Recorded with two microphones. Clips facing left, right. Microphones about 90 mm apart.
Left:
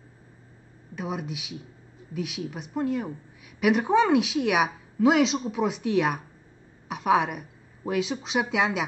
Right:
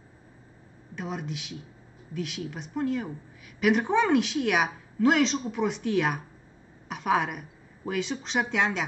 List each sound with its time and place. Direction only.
0.9 s a woman's voice: 5° left (ahead or behind)